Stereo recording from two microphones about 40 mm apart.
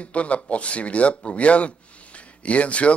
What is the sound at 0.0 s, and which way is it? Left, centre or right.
A man's voice, left.